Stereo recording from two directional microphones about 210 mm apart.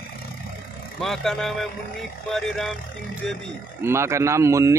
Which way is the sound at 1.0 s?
Centre (ahead or behind).